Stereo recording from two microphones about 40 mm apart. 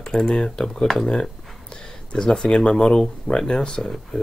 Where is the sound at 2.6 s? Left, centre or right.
Left.